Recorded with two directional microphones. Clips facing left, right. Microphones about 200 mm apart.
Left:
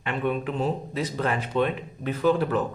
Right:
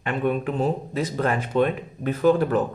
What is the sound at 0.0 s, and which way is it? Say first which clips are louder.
Speech: right 3 dB; 45° right (ahead or behind).